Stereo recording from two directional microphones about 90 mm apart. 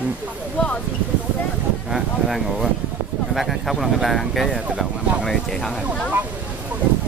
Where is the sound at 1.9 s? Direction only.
5° right (ahead or behind).